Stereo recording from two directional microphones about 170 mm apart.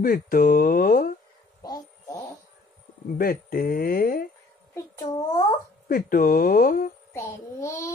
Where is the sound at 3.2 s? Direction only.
60° left (ahead or behind).